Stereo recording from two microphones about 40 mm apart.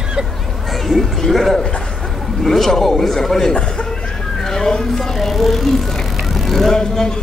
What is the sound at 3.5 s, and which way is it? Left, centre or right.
Chuckle, left.